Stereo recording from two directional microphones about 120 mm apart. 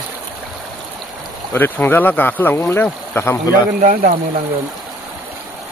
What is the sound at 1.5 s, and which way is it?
Speech, 15° left (ahead or behind).